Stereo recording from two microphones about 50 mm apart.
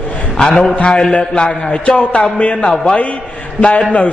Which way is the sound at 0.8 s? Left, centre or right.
Centre.